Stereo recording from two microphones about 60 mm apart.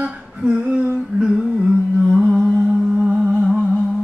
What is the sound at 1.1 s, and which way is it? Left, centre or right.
Humming, centre.